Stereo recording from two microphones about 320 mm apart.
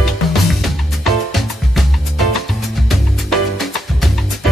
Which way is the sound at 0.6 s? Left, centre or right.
Centre.